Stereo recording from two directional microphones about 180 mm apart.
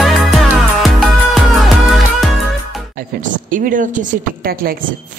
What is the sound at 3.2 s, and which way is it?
A woman's voice, 45° right (ahead or behind).